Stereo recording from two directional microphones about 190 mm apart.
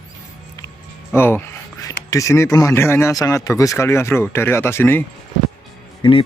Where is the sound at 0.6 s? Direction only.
10° left (ahead or behind).